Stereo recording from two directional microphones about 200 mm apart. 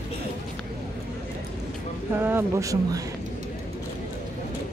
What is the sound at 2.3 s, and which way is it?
Speech, 15° right (ahead or behind).